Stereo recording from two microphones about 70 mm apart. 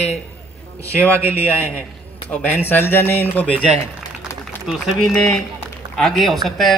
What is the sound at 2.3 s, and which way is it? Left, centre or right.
A man's voice, left.